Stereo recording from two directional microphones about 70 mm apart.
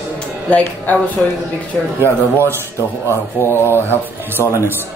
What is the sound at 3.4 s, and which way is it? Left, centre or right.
Speech, left.